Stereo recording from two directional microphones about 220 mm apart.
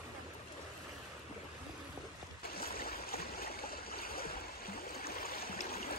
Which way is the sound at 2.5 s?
45° left (ahead or behind).